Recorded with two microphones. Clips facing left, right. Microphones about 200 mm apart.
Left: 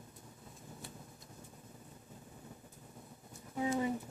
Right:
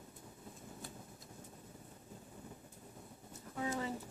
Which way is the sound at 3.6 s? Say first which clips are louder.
Left 5 dB; 15° left (ahead or behind).